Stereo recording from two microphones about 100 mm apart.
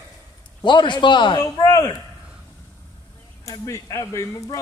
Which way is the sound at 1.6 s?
40° left (ahead or behind).